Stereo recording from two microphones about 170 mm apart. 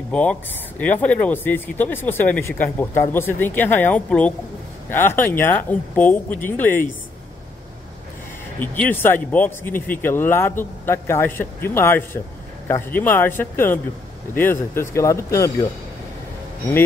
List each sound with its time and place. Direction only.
0.1 s speech: 5° left (ahead or behind)
8.5 s speech: 10° left (ahead or behind)